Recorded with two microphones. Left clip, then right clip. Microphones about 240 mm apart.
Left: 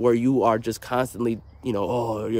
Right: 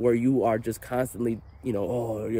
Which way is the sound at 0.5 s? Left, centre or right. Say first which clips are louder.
Left 4 dB; centre.